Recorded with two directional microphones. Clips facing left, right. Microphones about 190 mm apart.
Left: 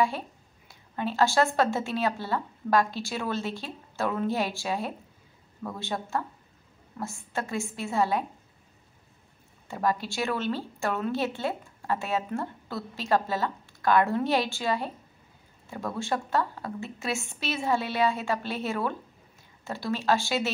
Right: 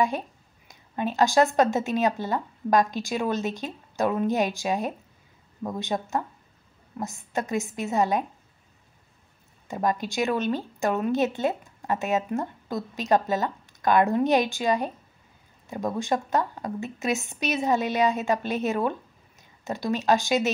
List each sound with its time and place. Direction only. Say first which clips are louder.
0.7 s a woman's voice: right 3 dB; 15° right (ahead or behind)
9.7 s a woman's voice: right 2 dB; 20° right (ahead or behind)